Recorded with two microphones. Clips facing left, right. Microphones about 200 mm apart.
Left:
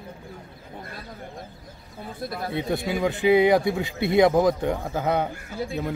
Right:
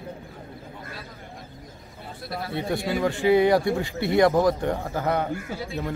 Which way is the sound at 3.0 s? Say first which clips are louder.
Left 1 dB; 15° left (ahead or behind).